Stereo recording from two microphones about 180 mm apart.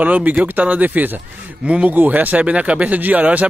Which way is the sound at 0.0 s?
10° right (ahead or behind).